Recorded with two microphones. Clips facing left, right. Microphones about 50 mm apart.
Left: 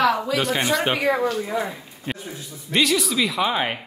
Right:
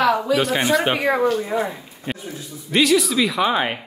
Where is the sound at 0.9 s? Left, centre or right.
Right.